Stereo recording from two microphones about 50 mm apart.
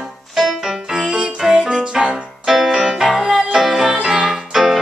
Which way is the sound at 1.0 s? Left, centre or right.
Right.